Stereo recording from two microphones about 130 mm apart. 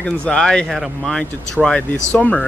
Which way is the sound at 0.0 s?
10° left (ahead or behind).